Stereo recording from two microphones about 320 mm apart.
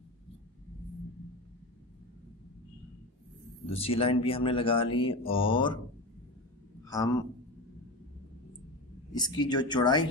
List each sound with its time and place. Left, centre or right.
3.7 s speech: centre
6.8 s a man's voice: centre
9.1 s speech: centre